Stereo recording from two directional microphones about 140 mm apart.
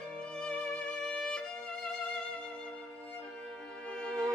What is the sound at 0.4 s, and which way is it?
Music, 5° left (ahead or behind).